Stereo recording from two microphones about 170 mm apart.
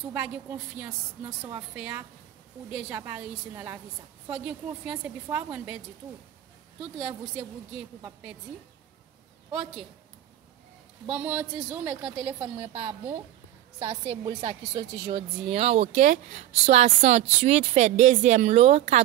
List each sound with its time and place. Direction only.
0.1 s a woman's voice: 10° right (ahead or behind)
7.0 s a woman's voice: 5° right (ahead or behind)
9.5 s speech: 5° right (ahead or behind)
11.1 s a woman's voice: 5° right (ahead or behind)
14.0 s a woman's voice: 25° right (ahead or behind)
15.0 s speech: 35° right (ahead or behind)